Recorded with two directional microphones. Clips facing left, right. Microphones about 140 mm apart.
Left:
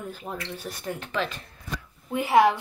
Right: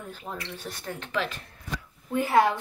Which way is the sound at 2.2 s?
15° left (ahead or behind).